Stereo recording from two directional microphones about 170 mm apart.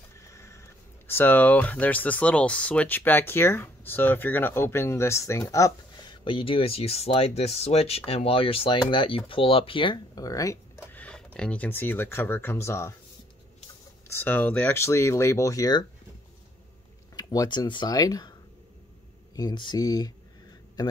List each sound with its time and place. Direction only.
0.2 s speech: 15° left (ahead or behind)
14.0 s speech: 15° left (ahead or behind)
17.1 s speech: 25° left (ahead or behind)
19.3 s speech: 25° left (ahead or behind)